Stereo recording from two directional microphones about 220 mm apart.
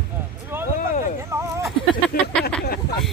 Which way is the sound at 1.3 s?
10° right (ahead or behind).